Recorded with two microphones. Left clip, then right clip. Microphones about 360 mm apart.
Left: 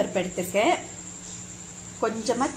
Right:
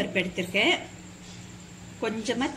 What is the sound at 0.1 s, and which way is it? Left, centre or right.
Speech, left.